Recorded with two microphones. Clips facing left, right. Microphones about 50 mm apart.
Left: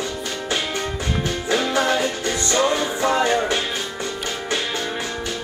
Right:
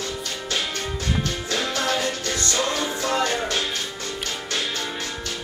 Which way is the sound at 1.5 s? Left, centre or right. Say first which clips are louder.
Left 6 dB; centre.